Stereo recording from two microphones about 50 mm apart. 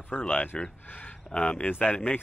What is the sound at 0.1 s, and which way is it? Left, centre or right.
Speech, left.